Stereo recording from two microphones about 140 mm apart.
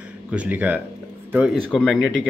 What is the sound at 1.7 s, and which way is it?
Speech, 5° left (ahead or behind).